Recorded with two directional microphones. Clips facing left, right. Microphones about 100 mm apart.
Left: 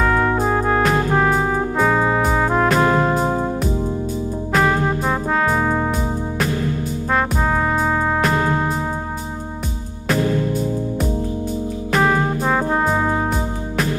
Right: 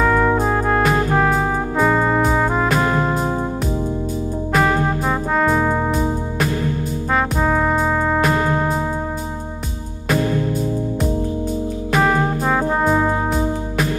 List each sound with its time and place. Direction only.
0.0 s music: centre (ahead or behind)
4.5 s music: centre (ahead or behind)
11.9 s music: centre (ahead or behind)